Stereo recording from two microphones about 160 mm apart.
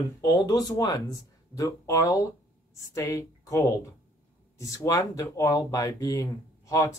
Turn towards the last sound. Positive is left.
turn(degrees=20)  # may be behind; listen again after turning